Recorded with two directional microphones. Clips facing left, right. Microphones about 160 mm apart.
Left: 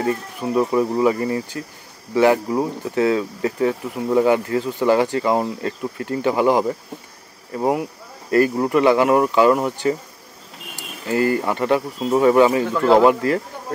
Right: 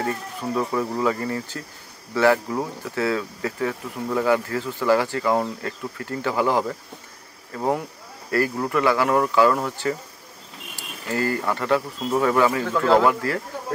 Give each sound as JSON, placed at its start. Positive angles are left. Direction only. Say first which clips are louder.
{"t": 0.0, "sound": "speech", "louder": "left 4 dB", "side_deg": 15}
{"t": 12.6, "sound": "speech", "louder": "left 3 dB", "side_deg": 10}
{"t": 13.0, "sound": "speech", "louder": "left 6 dB", "side_deg": 20}